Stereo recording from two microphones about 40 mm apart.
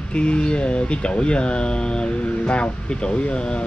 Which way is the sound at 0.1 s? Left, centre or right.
Left.